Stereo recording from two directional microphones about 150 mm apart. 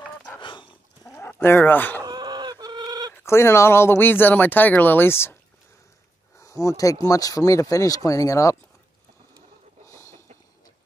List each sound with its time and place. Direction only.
0.4 s dog: 30° left (ahead or behind)
1.1 s a sound: 15° left (ahead or behind)
2.0 s chicken: 30° right (ahead or behind)
3.1 s speech: 15° left (ahead or behind)
6.4 s speech: 20° left (ahead or behind)
9.8 s a sound: 20° left (ahead or behind)